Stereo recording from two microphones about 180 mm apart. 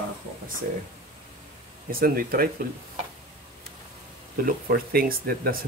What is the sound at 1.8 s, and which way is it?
Speech, 55° right (ahead or behind).